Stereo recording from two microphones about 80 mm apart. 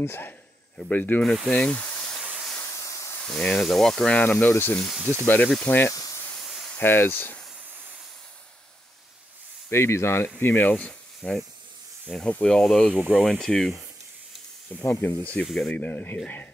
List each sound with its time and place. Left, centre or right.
0.0 s speech: left
0.7 s speech: left
2.8 s hiss: left
3.2 s speech: centre
4.2 s speech: left
5.9 s snake: left
6.3 s snake: centre
6.8 s speech: left
9.7 s speech: left
10.4 s speech: left; by 13.7 s centre
14.7 s speech: left